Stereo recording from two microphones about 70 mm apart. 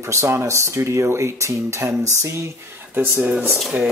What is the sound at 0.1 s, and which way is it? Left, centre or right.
Speech, right.